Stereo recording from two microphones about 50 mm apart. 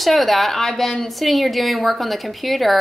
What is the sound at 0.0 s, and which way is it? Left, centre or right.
A woman's voice, centre.